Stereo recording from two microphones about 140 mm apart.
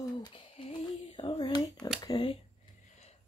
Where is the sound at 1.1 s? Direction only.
35° left (ahead or behind).